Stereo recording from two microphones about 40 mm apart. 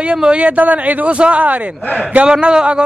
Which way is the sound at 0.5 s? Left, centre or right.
Right.